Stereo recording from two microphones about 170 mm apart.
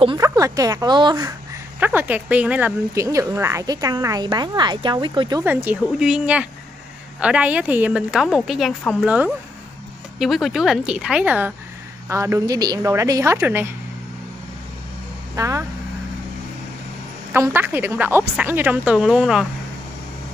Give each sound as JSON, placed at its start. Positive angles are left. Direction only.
{"t": 0.2, "sound": "speech", "side_deg": -20}
{"t": 1.8, "sound": "speech", "side_deg": -10}
{"t": 5.4, "sound": "a woman's voice", "side_deg": -10}
{"t": 15.3, "sound": "speech", "side_deg": -20}
{"t": 17.3, "sound": "a woman's voice", "side_deg": -15}